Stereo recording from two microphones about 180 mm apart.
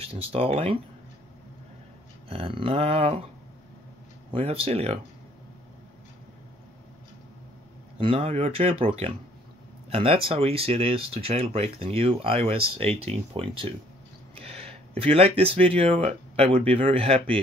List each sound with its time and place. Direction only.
0.0 s speech: 35° right (ahead or behind)
2.2 s speech: 30° right (ahead or behind)
4.3 s speech: 30° right (ahead or behind)
8.0 s speech: 30° right (ahead or behind)
14.3 s a sound: 35° right (ahead or behind)
15.6 s speech: 30° right (ahead or behind)